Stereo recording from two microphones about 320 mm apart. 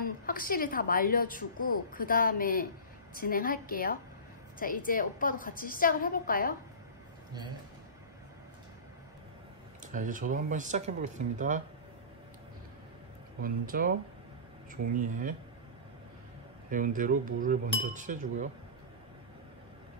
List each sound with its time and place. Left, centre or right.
0.0 s a woman's voice: left
9.9 s cutlery: right
13.4 s cutlery: right
16.7 s cutlery: right